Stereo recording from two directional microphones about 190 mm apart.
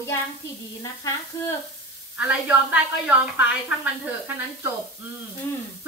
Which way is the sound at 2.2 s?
10° right (ahead or behind).